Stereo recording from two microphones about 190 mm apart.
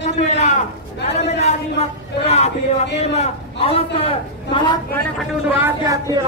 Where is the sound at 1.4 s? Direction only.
35° left (ahead or behind).